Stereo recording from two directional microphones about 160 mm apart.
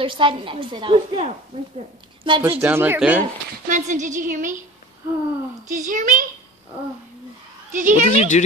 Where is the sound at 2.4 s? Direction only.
10° right (ahead or behind).